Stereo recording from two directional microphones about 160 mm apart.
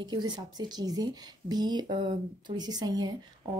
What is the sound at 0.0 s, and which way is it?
Speech, 25° right (ahead or behind).